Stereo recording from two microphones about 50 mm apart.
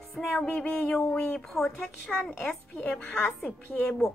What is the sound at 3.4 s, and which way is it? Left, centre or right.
Speech, left.